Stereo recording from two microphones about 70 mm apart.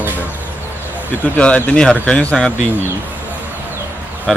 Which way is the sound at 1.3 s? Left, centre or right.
Centre.